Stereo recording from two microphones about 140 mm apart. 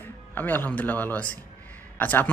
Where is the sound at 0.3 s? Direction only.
15° left (ahead or behind).